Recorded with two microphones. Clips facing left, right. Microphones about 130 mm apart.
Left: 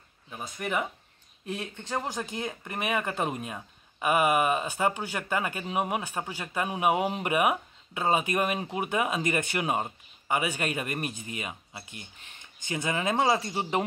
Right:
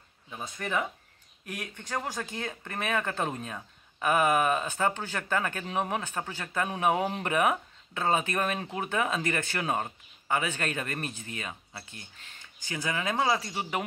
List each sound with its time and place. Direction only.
0.6 s speech: 15° left (ahead or behind)